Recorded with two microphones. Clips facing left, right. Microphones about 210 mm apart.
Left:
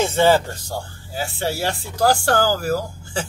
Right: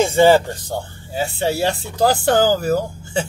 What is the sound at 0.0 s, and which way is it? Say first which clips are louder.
Speech: right 4 dB; 10° right (ahead or behind).